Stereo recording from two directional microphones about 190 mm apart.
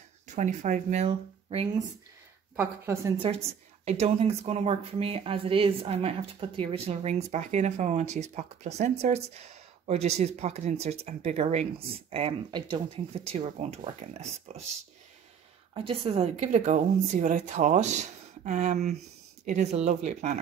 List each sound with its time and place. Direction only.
0.4 s speech: 40° right (ahead or behind)
2.5 s a woman's voice: 10° right (ahead or behind)
3.8 s speech: 35° right (ahead or behind)
15.7 s speech: 30° right (ahead or behind)